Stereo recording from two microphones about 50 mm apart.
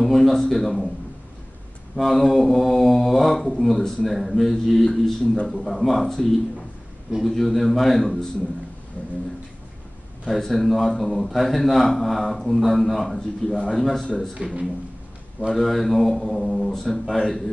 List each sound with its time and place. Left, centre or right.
0.0 s a man's voice: centre
2.0 s a man's voice: centre
7.2 s a man's voice: centre
10.2 s a man's voice: centre
14.3 s speech: centre
15.4 s a man's voice: centre